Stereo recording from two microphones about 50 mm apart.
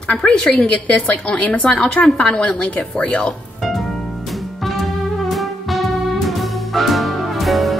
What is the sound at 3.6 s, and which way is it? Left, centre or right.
Music, centre.